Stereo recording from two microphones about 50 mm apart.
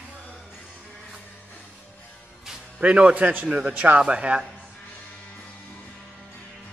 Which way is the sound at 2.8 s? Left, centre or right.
Right.